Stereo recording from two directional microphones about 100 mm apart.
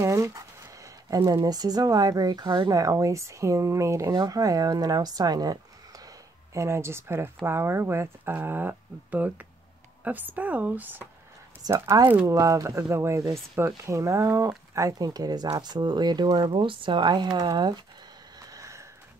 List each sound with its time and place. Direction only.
0.0 s speech: 30° right (ahead or behind); by 2.7 s 50° right (ahead or behind)
2.7 s speech: 35° right (ahead or behind)
16.5 s speech: 55° right (ahead or behind)
18.4 s a sound: 35° right (ahead or behind)